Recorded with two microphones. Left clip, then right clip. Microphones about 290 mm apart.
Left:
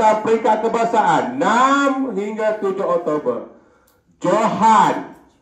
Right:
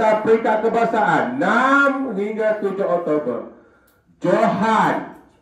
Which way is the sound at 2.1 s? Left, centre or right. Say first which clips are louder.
Even; centre.